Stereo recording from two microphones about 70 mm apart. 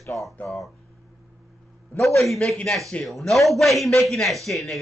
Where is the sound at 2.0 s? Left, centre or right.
Centre.